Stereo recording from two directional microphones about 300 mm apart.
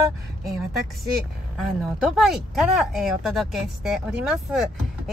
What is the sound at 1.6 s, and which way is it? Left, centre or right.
Speech, centre.